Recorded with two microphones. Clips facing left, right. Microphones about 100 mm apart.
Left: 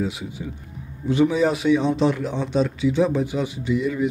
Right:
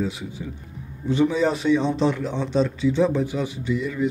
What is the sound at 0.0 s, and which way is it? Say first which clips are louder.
Speech: left 1 dB; 15° left (ahead or behind).